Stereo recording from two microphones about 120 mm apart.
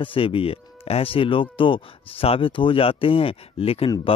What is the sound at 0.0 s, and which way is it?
Speech, 50° left (ahead or behind).